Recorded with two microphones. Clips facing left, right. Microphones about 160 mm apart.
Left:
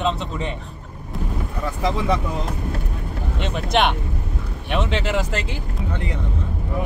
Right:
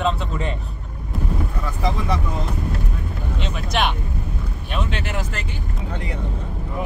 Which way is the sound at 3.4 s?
60° left (ahead or behind).